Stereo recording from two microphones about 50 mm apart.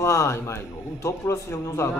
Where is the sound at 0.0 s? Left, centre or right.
Left.